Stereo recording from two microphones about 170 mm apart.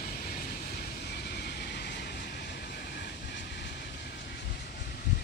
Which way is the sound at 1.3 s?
65° left (ahead or behind).